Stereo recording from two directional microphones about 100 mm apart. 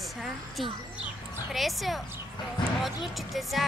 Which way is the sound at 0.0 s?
Centre (ahead or behind).